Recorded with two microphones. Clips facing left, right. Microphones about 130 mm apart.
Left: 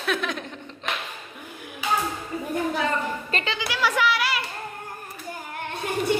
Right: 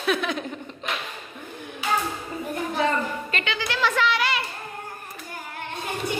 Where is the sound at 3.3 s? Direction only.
35° left (ahead or behind).